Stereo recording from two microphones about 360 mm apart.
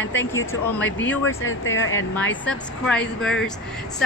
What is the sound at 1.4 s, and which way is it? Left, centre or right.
Speech, left.